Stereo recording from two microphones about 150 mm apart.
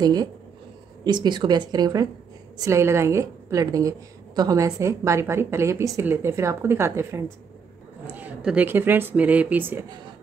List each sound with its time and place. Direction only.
0.0 s a woman's voice: 25° right (ahead or behind)